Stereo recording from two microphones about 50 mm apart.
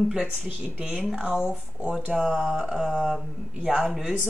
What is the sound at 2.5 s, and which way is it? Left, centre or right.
Mantra, centre.